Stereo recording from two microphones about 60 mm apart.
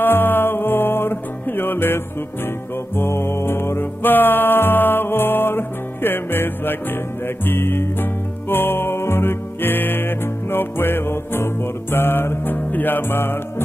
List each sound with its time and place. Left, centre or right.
0.0 s music: left
3.0 s music: left